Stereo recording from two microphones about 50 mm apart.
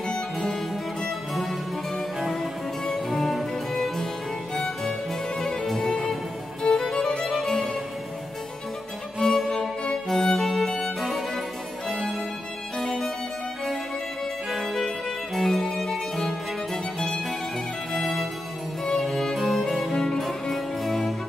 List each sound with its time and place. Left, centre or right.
0.1 s music: centre
2.9 s music: centre
5.4 s music: centre
9.2 s music: centre
9.5 s music: centre
10.0 s violin: centre
12.7 s music: centre
14.5 s music: centre